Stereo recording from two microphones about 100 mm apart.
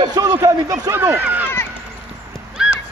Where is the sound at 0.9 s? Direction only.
25° right (ahead or behind).